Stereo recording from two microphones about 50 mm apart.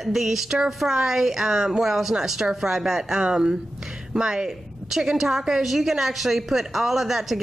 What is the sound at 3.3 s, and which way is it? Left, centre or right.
A woman's voice, centre.